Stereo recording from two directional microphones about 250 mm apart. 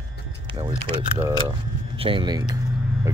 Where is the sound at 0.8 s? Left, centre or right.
Centre.